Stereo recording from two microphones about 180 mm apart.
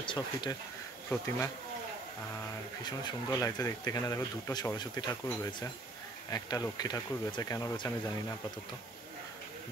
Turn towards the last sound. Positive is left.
turn(degrees=20)  # may be behind; listen again after turning